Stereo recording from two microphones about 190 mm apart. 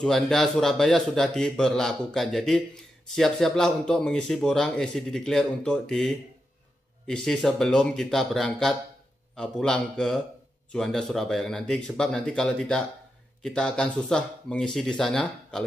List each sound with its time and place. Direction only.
0.0 s speech: centre (ahead or behind)